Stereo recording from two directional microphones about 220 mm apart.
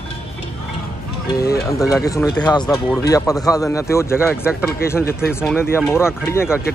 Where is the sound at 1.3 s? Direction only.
15° left (ahead or behind).